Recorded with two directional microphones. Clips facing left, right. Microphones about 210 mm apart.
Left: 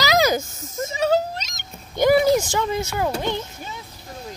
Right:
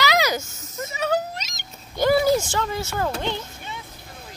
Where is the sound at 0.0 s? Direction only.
45° left (ahead or behind).